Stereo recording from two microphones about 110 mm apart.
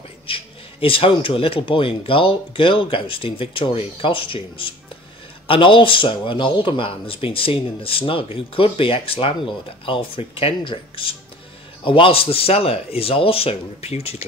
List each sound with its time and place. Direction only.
0.3 s speech: 55° left (ahead or behind); by 14.2 s 70° left (ahead or behind)